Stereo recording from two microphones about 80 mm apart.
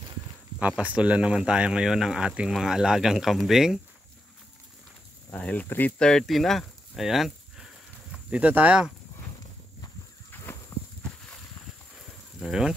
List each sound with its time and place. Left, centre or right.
0.6 s speech: centre
5.4 s speech: centre
10.3 s a sound: left
12.4 s speech: centre